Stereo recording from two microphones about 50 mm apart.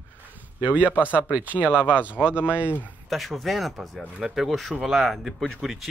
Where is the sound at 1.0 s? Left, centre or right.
Right.